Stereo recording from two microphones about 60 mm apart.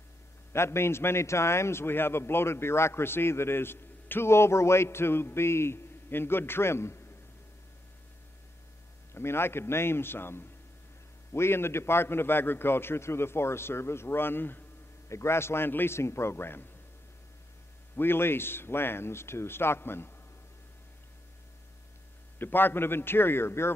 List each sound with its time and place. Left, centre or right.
0.5 s a man's voice: left
9.1 s a man's voice: left
15.0 s a man's voice: left
17.9 s a man's voice: left
22.4 s a man's voice: left